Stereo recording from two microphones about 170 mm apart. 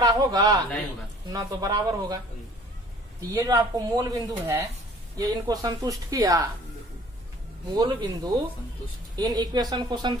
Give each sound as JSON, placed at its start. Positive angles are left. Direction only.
{"t": 0.0, "sound": "a man's voice", "side_deg": -20}
{"t": 3.2, "sound": "speech", "side_deg": -20}
{"t": 7.7, "sound": "speech", "side_deg": -25}